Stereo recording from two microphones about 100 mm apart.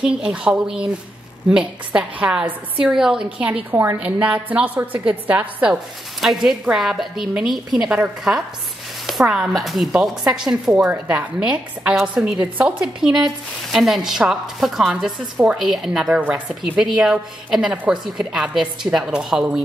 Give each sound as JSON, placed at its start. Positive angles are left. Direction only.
{"t": 0.0, "sound": "a woman's voice", "side_deg": -10}
{"t": 3.7, "sound": "a woman's voice", "side_deg": -20}